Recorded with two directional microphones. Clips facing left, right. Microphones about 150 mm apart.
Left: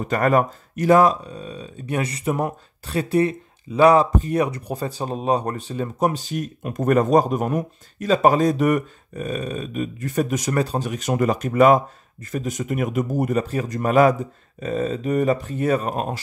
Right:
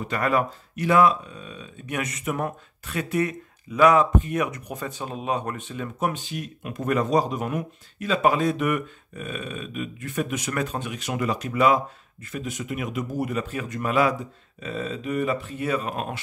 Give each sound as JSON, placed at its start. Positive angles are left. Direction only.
{"t": 0.0, "sound": "speech", "side_deg": 45}